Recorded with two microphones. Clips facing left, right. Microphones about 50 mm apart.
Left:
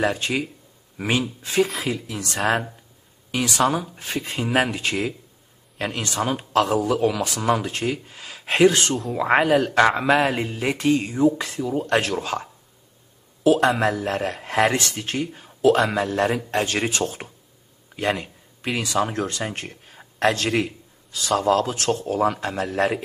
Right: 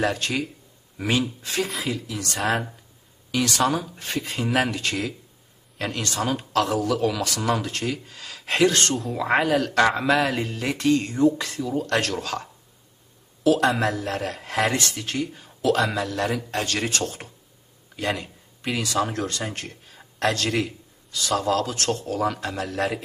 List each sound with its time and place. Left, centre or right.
0.0 s speech: centre
1.5 s speech: centre
2.0 s a man's voice: left
3.3 s speech: centre
4.2 s a man's voice: left
8.9 s speech: centre
9.2 s a man's voice: left; by 11.4 s centre
11.4 s a man's voice: left
17.9 s a sound: left
18.8 s a man's voice: left
21.1 s a man's voice: centre
21.5 s speech: left